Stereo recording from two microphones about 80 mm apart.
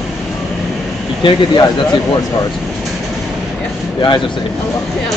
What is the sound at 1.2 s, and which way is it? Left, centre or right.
Speech, left.